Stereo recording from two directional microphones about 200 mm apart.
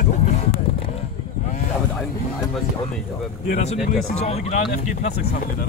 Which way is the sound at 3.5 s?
35° left (ahead or behind).